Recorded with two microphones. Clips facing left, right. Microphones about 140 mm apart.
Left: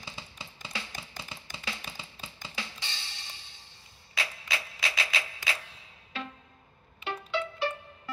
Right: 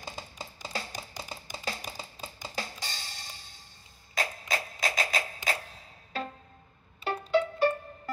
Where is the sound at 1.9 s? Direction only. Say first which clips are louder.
Right 4 dB; 40° right (ahead or behind).